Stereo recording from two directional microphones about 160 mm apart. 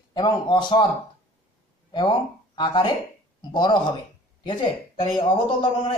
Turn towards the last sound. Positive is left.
turn(degrees=35)  # may be behind; listen again after turning